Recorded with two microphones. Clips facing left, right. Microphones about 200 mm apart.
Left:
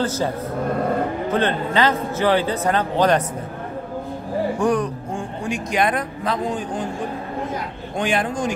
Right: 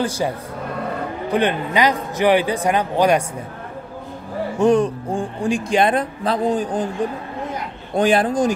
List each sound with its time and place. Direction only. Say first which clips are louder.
0.0 s a man's voice: right 1 dB; 15° right (ahead or behind)
1.3 s a man's voice: right 3 dB; 15° right (ahead or behind)
4.6 s speech: right 8 dB; 25° right (ahead or behind)
7.9 s speech: right 6 dB; 35° right (ahead or behind)